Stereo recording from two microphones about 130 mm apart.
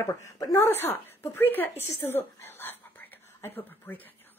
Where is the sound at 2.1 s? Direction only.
15° left (ahead or behind).